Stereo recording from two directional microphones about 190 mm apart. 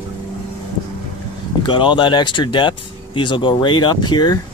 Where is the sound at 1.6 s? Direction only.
25° left (ahead or behind).